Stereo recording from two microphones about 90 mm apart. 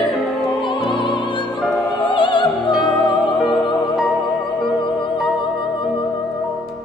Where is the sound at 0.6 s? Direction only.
65° left (ahead or behind).